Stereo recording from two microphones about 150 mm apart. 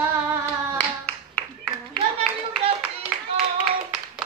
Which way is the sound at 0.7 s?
10° left (ahead or behind).